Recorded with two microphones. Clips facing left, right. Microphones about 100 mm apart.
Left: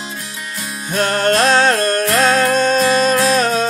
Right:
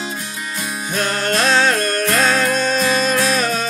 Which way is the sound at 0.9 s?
45° left (ahead or behind).